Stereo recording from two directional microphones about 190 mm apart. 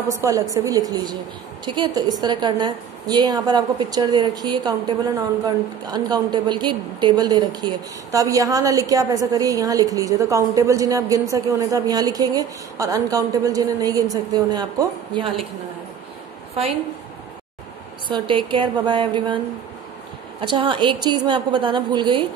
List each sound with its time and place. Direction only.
0.1 s a woman's voice: 15° right (ahead or behind)
18.0 s a woman's voice: 25° right (ahead or behind)